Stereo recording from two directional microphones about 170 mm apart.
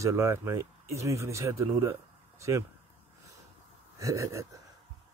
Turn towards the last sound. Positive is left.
turn(degrees=-15)  # may be behind; listen again after turning